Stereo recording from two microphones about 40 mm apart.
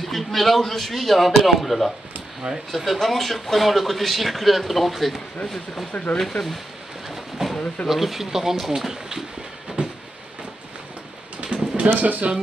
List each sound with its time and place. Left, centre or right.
0.0 s speech: centre
5.9 s speech: left
7.4 s a sound: centre
7.9 s speech: centre
9.8 s vehicle: right
11.4 s a sound: right
11.9 s speech: right